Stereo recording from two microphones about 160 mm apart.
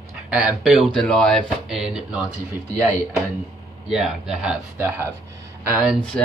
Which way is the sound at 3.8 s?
Centre (ahead or behind).